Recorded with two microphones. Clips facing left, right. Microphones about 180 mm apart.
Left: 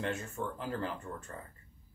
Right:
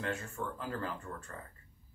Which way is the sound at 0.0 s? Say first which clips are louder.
Left 2 dB; 25° left (ahead or behind).